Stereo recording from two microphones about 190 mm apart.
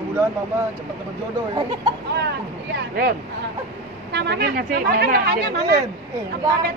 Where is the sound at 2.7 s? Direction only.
60° right (ahead or behind).